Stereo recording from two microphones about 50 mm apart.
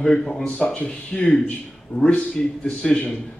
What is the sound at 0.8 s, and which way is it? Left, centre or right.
Speech, left.